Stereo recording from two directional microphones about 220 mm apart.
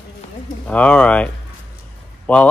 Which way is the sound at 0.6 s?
5° left (ahead or behind).